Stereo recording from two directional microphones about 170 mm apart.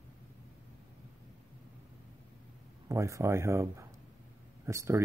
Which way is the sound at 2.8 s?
20° right (ahead or behind).